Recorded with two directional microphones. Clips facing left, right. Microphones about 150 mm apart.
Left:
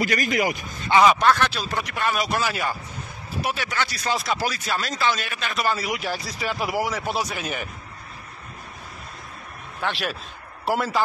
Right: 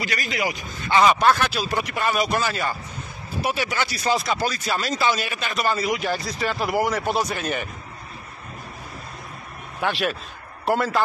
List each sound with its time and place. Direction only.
0.0 s speech: 50° left (ahead or behind)
1.0 s speech: 5° right (ahead or behind)
3.4 s speech: 5° right (ahead or behind)
9.8 s a man's voice: 5° right (ahead or behind)